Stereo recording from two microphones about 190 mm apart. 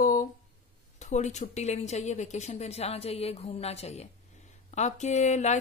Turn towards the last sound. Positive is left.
turn(degrees=40)  # may be behind; listen again after turning